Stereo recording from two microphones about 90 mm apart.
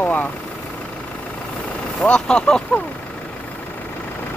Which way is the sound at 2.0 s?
10° left (ahead or behind).